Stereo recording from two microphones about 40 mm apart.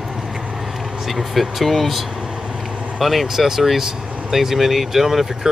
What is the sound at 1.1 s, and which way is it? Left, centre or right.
Speech, centre.